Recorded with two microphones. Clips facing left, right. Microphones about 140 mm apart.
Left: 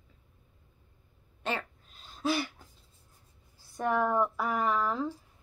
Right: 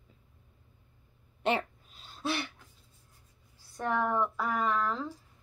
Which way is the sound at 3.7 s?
10° left (ahead or behind).